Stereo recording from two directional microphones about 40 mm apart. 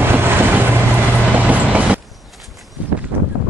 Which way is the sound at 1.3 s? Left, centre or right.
Right.